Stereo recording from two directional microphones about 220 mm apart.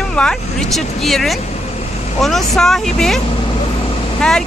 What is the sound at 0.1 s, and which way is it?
Speech, 5° left (ahead or behind).